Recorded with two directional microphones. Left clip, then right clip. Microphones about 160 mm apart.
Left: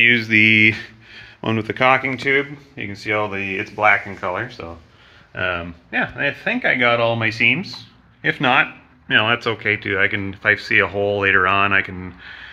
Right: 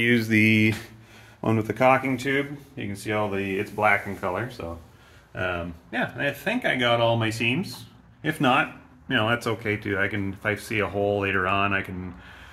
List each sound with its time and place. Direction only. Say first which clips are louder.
0.0 s speech: left 8 dB; 35° right (ahead or behind); by 2.0 s 10° right (ahead or behind)
2.0 s speech: left 7 dB; 5° left (ahead or behind)
5.3 s speech: left 6 dB; 10° left (ahead or behind)
7.6 s a sound: left 5 dB; centre (ahead or behind)
8.3 s speech: left 6 dB; 10° right (ahead or behind)